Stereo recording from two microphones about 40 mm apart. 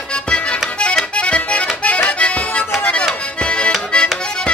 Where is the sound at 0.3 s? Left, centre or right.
Left.